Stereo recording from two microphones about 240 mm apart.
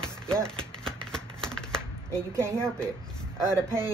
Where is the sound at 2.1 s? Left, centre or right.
Centre.